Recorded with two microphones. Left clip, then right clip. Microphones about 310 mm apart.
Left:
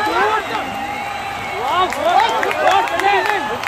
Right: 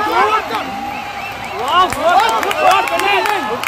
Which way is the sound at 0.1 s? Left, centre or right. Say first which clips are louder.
Right 5 dB; right.